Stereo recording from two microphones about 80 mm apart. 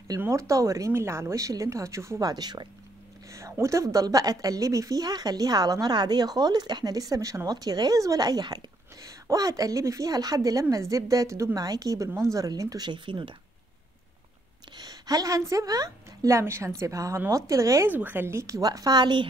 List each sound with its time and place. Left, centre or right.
0.3 s speech: right
2.2 s a woman's voice: right
3.3 s a sound: right
3.6 s speech: right
14.8 s speech: right
17.8 s speech: right
18.6 s a woman's voice: right